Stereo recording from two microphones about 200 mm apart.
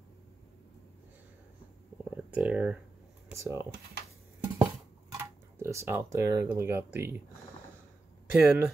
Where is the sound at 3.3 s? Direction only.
15° right (ahead or behind).